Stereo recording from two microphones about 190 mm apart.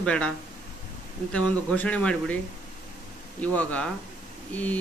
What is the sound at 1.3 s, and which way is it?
Speech, 5° left (ahead or behind).